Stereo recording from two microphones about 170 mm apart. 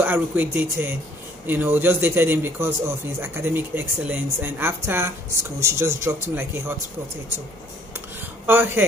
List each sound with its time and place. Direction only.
0.0 s a woman's voice: 10° right (ahead or behind)
8.5 s a woman's voice: 15° right (ahead or behind)